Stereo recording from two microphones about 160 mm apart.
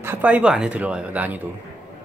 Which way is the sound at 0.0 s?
10° right (ahead or behind).